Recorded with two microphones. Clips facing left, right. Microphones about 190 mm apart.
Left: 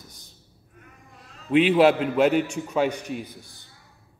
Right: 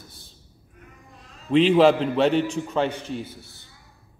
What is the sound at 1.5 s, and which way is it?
A man's voice, 10° left (ahead or behind).